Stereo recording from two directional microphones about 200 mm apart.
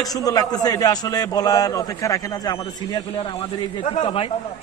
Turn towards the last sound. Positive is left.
turn(degrees=30)  # may be behind; listen again after turning